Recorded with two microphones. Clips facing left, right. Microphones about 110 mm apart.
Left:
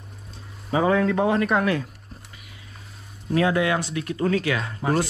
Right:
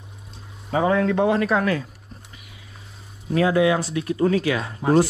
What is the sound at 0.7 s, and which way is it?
Speech, centre (ahead or behind).